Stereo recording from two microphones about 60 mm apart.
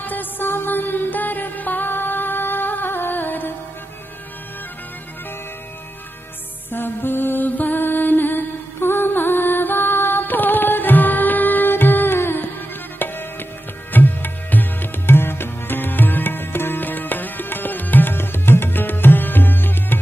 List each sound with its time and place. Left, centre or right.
0.0 s music: left
6.7 s music: left